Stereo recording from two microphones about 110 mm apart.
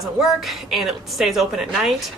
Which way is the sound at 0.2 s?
Centre (ahead or behind).